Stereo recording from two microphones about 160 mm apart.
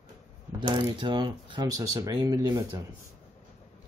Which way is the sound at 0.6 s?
30° right (ahead or behind).